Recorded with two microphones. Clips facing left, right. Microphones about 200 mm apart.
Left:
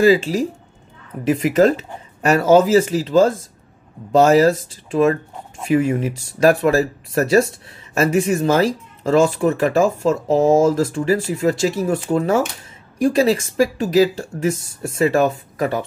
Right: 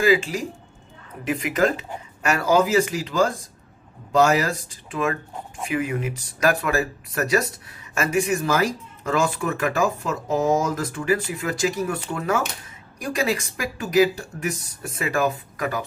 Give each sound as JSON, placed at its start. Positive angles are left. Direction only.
{"t": 0.0, "sound": "speech", "side_deg": 30}
{"t": 5.7, "sound": "speech", "side_deg": 30}